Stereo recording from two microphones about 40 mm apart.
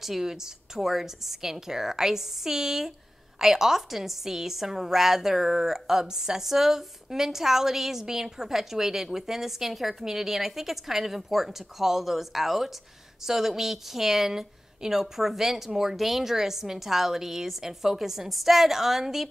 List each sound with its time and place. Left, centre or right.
0.0 s a woman's voice: centre